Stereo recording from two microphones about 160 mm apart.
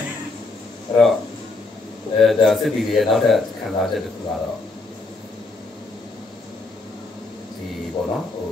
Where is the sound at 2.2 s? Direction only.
Centre (ahead or behind).